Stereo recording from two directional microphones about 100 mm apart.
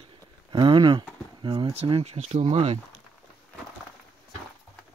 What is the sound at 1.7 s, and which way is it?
Speech, 80° right.